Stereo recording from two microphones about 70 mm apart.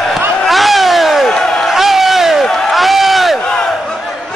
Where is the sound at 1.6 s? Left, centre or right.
Centre.